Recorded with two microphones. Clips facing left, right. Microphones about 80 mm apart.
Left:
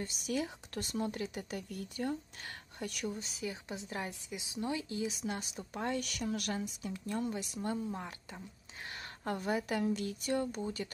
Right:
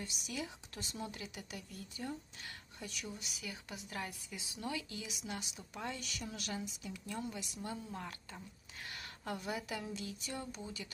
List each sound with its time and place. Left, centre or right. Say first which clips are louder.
0.0 s speech: left 7 dB; left
1.7 s speech: left 7 dB; left
3.2 s speech: left 7 dB; left
7.9 s speech: left 3 dB; centre
9.2 s speech: left 6 dB; left